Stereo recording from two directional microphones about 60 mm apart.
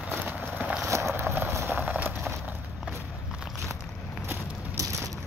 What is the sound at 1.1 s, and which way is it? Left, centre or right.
Run, right.